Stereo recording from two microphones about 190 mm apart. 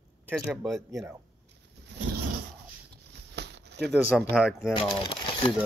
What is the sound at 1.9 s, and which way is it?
Zipper, 60° right (ahead or behind).